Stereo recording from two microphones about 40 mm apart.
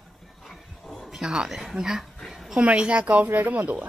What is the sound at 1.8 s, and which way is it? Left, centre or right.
Speech, centre.